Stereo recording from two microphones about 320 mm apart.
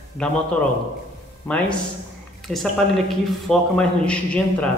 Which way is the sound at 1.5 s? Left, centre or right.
Centre.